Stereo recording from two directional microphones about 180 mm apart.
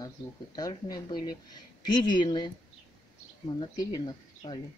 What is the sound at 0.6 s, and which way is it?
Speech, 20° left (ahead or behind).